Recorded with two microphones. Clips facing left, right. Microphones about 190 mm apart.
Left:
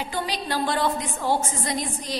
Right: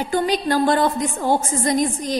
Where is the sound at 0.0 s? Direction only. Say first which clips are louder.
Right 9 dB; 45° right (ahead or behind).